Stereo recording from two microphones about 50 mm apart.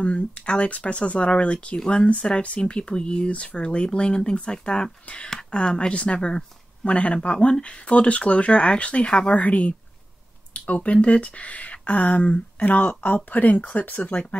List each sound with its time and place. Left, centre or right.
0.0 s speech: left